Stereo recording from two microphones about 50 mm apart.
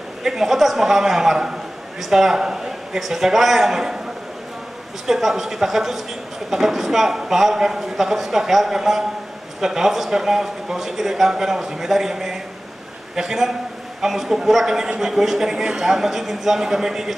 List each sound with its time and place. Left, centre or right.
0.2 s a man's voice: centre
5.0 s a man's voice: centre